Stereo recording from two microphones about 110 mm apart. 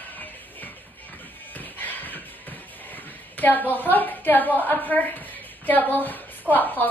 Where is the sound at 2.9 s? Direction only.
15° left (ahead or behind).